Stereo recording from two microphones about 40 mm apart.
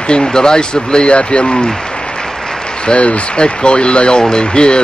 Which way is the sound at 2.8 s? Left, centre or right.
Left.